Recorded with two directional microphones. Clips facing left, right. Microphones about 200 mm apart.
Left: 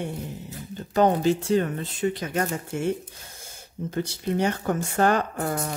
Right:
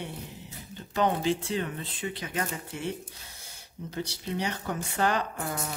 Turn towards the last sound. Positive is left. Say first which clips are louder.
# left 6 dB
turn(degrees=45)  # may be behind; listen again after turning